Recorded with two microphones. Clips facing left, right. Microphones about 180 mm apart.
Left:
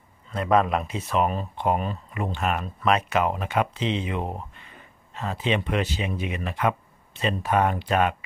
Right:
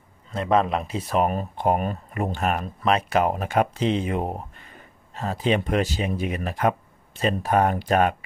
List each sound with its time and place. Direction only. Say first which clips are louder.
0.3 s speech: even; 30° right (ahead or behind)